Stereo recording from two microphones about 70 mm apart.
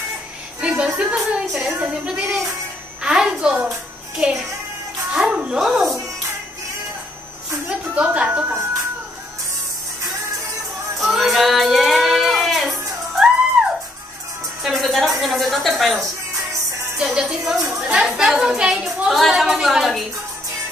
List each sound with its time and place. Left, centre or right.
0.6 s a sound: centre
0.9 s a woman's voice: centre
5.1 s music: centre
5.6 s a woman's voice: centre
7.6 s speech: right
11.0 s child singing: centre
14.6 s a woman's voice: centre